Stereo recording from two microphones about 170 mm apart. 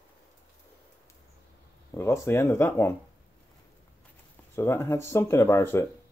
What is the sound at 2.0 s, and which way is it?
Speech, 15° left (ahead or behind).